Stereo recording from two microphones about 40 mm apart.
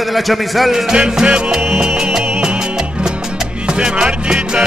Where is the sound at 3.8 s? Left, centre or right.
Right.